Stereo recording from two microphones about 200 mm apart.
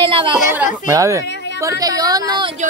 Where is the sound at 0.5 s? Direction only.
10° right (ahead or behind).